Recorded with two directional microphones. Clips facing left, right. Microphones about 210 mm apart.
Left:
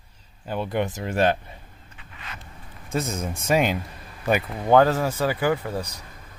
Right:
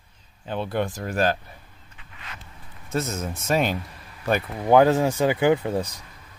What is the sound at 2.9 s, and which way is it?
Speech, 15° left (ahead or behind).